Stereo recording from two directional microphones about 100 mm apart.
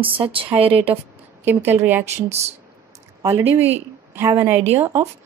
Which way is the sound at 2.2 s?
90° right.